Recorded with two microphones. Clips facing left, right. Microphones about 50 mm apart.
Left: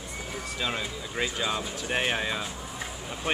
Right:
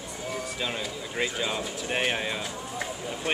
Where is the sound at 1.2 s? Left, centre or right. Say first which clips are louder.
Even; centre.